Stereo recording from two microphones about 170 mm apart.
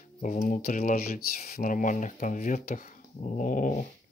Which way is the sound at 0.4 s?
55° left (ahead or behind).